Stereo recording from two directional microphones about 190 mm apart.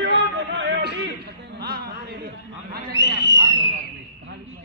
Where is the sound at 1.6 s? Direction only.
55° right (ahead or behind).